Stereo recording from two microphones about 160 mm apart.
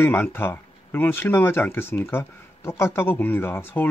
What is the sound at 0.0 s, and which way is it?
Speech, 15° left (ahead or behind).